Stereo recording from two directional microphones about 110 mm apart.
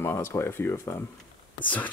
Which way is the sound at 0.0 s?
25° left (ahead or behind).